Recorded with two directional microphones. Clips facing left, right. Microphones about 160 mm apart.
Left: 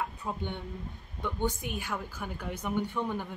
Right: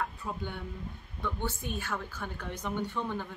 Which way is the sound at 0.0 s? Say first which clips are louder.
Left 1 dB; 20° left (ahead or behind).